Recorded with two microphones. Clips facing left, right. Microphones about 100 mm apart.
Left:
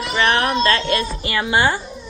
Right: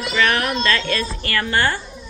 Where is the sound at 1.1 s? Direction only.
15° left (ahead or behind).